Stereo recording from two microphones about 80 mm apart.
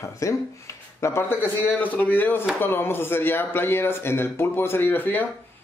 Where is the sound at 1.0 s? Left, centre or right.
Left.